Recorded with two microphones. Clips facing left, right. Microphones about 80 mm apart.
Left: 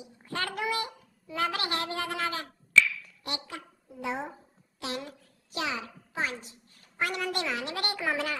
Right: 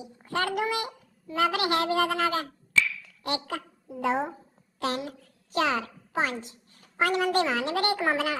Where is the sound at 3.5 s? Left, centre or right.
Right.